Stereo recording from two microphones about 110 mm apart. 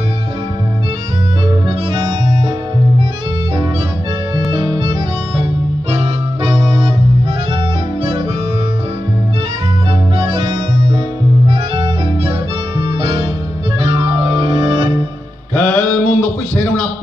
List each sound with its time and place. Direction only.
10.3 s music: 35° right (ahead or behind)
14.0 s music: 55° right (ahead or behind)
15.5 s music: 5° left (ahead or behind)